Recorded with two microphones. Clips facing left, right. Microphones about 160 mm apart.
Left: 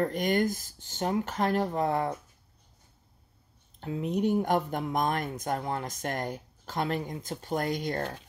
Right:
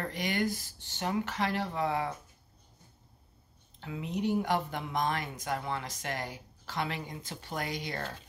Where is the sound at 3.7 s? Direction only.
45° left (ahead or behind).